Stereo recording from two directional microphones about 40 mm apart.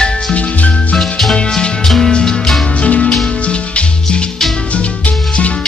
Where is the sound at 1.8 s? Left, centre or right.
Centre.